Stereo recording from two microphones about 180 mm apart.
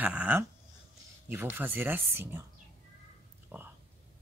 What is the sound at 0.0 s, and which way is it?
Speech, 5° right (ahead or behind).